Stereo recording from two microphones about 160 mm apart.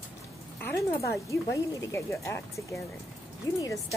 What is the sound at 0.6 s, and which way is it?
Speech, 20° left (ahead or behind).